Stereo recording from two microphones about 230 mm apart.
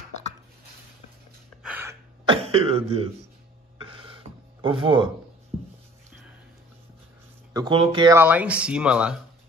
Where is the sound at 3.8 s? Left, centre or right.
Right.